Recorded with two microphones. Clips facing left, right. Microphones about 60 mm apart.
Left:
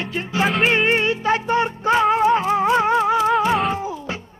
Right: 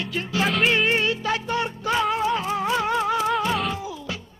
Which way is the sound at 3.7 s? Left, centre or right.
Left.